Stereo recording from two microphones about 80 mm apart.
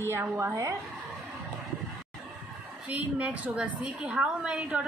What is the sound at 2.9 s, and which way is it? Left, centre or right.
A woman's voice, centre.